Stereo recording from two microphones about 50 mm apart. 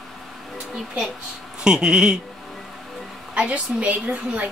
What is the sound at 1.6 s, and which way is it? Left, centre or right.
Speech, centre.